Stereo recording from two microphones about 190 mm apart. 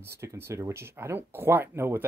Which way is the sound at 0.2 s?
15° right (ahead or behind).